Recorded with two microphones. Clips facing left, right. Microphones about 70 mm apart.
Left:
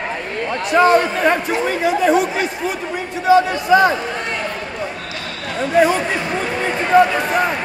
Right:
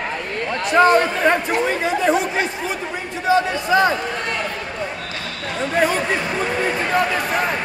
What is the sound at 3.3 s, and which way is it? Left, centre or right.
Speech, centre.